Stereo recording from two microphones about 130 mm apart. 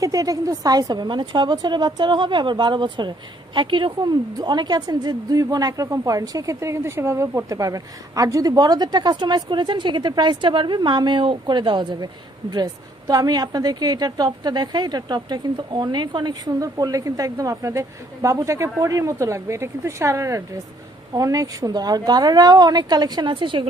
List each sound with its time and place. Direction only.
0.0 s a woman's voice: 25° right (ahead or behind)